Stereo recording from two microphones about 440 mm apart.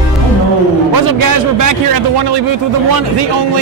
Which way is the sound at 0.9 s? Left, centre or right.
Right.